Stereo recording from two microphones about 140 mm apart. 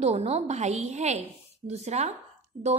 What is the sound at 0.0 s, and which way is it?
A woman's voice, 50° right (ahead or behind).